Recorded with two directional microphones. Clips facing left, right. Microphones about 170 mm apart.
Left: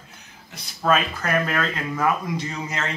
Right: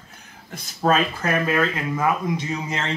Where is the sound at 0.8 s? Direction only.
25° right (ahead or behind).